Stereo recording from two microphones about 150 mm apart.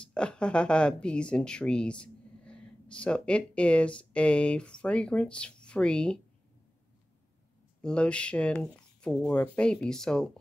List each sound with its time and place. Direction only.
0.0 s speech: 5° left (ahead or behind)
7.8 s speech: 5° left (ahead or behind)